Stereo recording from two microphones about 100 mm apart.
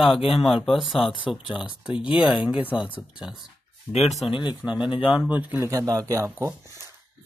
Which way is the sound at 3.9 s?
90° left.